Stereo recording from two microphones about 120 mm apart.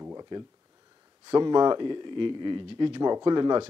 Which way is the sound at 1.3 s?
40° right (ahead or behind).